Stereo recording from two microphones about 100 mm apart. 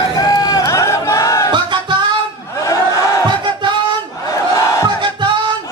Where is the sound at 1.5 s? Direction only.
50° right (ahead or behind).